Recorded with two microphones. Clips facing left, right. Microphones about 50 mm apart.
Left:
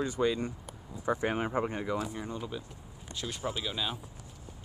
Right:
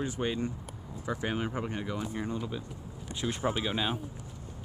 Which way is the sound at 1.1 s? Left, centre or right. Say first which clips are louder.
Left 3 dB; left.